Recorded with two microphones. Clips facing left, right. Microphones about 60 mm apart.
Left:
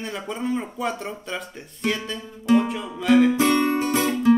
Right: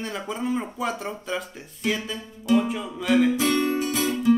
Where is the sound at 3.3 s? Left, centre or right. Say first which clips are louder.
Left 3 dB; left.